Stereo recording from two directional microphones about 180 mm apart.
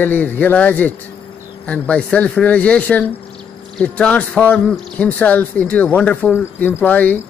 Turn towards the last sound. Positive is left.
turn(degrees=10)  # may be behind; listen again after turning